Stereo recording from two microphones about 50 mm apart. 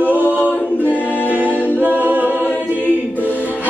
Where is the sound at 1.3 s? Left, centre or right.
Right.